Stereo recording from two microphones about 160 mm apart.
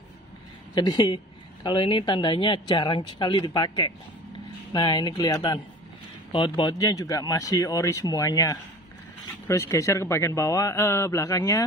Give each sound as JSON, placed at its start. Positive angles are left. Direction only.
{"t": 0.7, "sound": "speech", "side_deg": 30}